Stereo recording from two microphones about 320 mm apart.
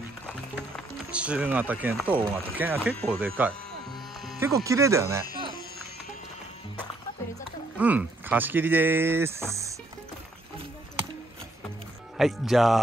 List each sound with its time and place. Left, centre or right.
0.6 s music: centre
2.1 s speech: centre
7.7 s speech: centre
12.2 s speech: centre